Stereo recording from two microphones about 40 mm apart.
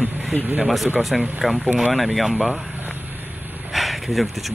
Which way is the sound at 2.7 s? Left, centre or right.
Right.